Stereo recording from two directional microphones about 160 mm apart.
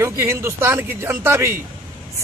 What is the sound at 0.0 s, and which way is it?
A man's voice, 15° right (ahead or behind).